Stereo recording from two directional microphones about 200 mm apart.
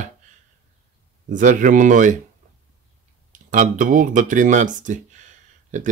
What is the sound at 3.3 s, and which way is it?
Speech, 40° right (ahead or behind).